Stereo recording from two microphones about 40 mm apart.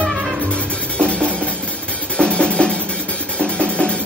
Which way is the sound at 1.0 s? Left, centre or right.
Left.